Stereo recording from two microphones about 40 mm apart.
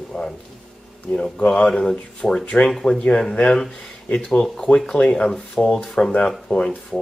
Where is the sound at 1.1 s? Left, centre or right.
Left.